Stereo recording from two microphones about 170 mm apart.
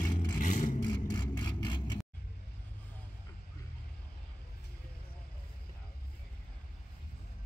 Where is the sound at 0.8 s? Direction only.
25° left (ahead or behind).